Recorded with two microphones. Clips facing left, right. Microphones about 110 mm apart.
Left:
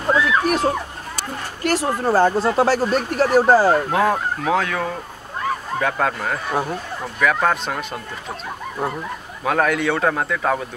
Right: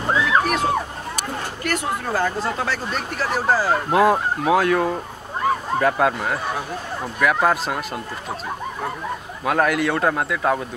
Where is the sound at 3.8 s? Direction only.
5° right (ahead or behind).